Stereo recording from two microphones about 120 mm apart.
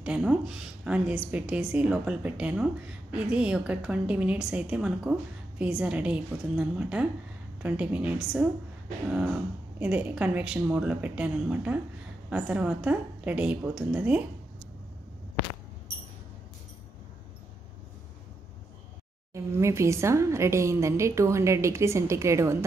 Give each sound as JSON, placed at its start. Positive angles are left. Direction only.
{"t": 0.0, "sound": "a woman's voice", "side_deg": -10}
{"t": 19.3, "sound": "a woman's voice", "side_deg": -25}